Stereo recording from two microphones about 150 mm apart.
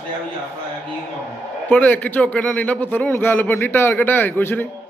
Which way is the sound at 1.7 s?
10° left (ahead or behind).